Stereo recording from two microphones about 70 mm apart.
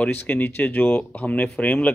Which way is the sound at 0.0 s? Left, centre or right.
Left.